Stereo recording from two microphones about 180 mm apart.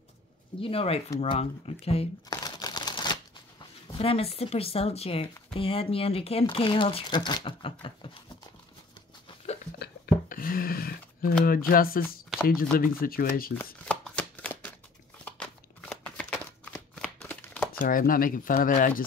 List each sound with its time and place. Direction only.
0.6 s speech: 30° left (ahead or behind)
2.4 s crumpling: 20° left (ahead or behind)
4.0 s speech: 35° left (ahead or behind)
9.8 s a sound: 50° left (ahead or behind)
11.4 s speech: 55° left (ahead or behind)
13.8 s shuffling cards: 5° left (ahead or behind)
15.2 s a sound: 5° left (ahead or behind)
17.7 s speech: 50° left (ahead or behind)